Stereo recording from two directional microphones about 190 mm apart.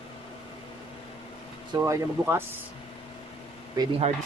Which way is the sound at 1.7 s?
15° right (ahead or behind).